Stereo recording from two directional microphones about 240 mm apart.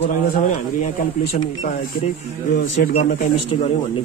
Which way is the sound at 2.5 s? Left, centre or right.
Left.